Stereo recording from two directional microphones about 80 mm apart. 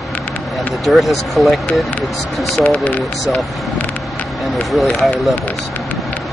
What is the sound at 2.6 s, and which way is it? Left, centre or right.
Speech, left.